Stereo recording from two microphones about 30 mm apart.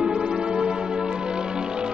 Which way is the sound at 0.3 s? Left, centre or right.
Centre.